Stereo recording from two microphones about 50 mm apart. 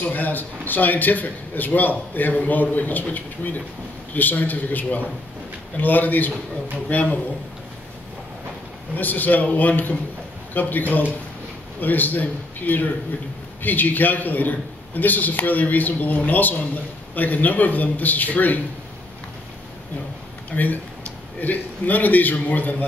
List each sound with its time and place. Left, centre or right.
0.0 s a man's voice: left
8.9 s a man's voice: left
20.5 s a man's voice: left